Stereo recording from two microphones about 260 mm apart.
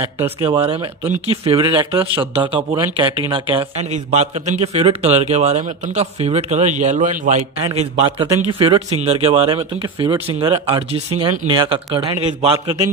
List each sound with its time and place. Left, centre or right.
0.5 s a man's voice: centre